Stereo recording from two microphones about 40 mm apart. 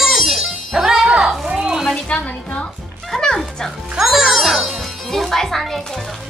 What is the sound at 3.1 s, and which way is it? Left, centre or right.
Music, centre.